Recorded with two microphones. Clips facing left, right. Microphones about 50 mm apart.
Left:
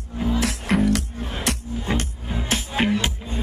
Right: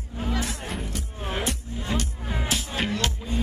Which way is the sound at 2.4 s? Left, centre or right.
Left.